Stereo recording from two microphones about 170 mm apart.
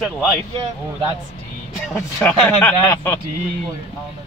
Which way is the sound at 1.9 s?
10° left (ahead or behind).